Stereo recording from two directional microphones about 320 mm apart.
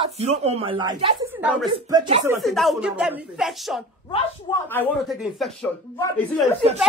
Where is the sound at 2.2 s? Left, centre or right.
Centre.